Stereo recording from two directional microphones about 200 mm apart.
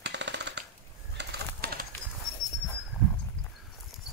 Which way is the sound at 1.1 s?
50° right (ahead or behind).